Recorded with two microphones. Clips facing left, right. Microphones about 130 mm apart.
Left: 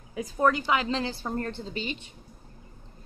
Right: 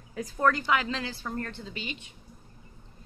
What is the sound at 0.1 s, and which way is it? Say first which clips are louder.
A woman's voice: left 2 dB; 15° left (ahead or behind).